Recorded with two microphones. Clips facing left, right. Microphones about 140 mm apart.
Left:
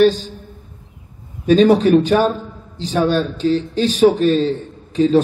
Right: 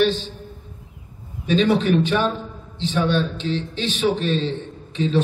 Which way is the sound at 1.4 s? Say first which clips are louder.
Left 7 dB; 40° left (ahead or behind).